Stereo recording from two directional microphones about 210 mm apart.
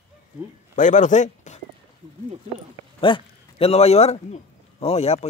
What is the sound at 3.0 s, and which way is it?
A man's voice, 25° left (ahead or behind).